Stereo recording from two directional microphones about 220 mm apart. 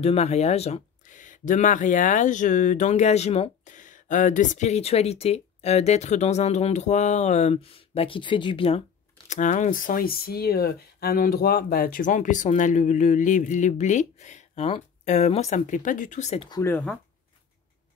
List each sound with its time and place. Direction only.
0.0 s speech: 30° left (ahead or behind)
16.4 s speech: 15° left (ahead or behind)